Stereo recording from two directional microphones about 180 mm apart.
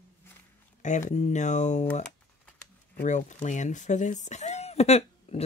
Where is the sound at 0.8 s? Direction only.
40° left (ahead or behind).